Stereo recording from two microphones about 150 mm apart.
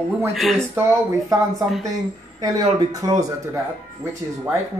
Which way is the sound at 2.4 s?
25° right (ahead or behind).